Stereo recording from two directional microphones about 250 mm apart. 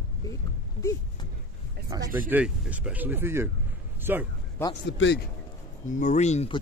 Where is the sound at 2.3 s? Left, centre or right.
Centre.